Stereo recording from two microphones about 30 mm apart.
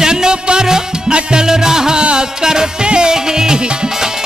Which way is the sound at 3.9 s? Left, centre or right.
Centre.